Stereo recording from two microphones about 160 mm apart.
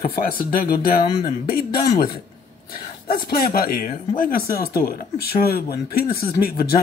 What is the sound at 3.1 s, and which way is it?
Speech, 70° left (ahead or behind).